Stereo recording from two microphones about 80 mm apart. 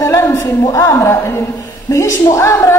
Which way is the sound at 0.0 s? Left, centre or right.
Left.